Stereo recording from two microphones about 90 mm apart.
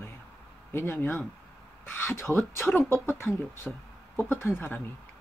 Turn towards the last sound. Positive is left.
turn(degrees=25)  # may be behind; listen again after turning